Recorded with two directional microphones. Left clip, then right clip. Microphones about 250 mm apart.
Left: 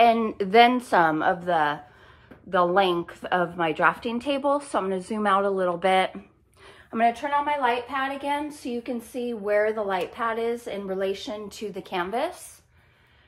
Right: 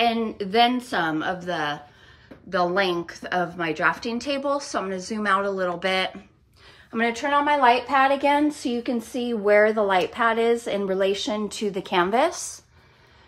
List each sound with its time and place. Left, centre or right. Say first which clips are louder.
0.0 s a woman's voice: left 4 dB; left
7.2 s a woman's voice: right 4 dB; centre
8.5 s a woman's voice: right 6 dB; right